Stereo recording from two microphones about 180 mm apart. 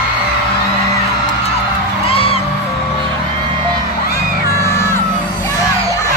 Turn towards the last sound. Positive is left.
turn(degrees=15)  # may be behind; listen again after turning